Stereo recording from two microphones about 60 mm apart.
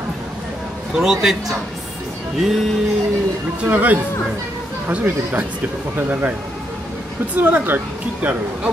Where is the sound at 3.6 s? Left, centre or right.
Right.